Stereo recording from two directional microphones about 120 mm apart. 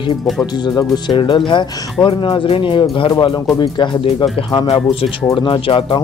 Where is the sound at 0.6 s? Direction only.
35° left (ahead or behind).